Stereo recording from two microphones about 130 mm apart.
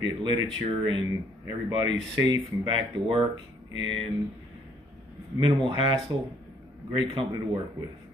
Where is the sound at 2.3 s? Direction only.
40° right (ahead or behind).